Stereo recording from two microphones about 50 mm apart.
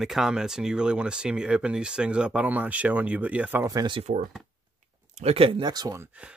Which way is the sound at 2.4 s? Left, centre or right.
Right.